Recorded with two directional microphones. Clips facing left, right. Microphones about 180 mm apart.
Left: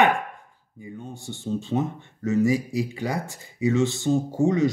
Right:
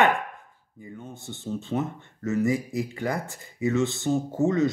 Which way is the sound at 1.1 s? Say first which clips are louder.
Left 3 dB; 20° right (ahead or behind).